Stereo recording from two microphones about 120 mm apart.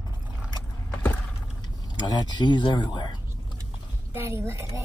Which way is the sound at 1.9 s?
35° left (ahead or behind).